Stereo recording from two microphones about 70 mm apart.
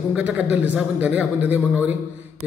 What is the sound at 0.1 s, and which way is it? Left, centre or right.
A man's voice, right.